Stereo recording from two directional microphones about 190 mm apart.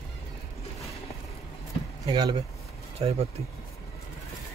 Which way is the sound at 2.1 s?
20° right (ahead or behind).